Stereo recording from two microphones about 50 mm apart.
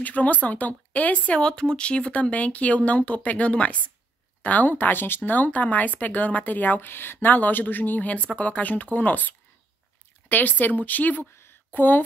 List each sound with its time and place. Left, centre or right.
0.0 s speech: left
1.5 s speech: centre; by 11.2 s left
11.4 s a sound: left